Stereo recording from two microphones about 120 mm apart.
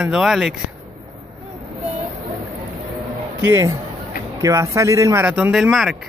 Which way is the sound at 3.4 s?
25° right (ahead or behind).